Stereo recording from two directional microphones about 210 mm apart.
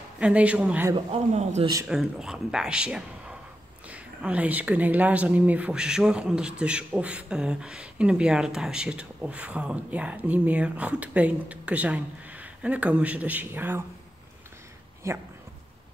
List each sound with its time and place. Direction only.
0.2 s speech: 5° right (ahead or behind)
0.9 s a man's voice: 30° right (ahead or behind)
1.9 s speech: 5° right (ahead or behind)
15.0 s speech: 15° right (ahead or behind)